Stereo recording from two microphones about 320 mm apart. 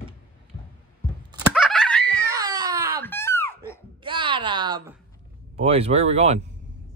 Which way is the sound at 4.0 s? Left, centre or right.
Centre.